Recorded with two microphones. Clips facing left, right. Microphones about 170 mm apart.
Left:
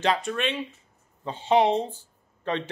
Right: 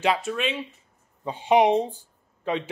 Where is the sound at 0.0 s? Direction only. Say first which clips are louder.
Right 1 dB; 5° right (ahead or behind).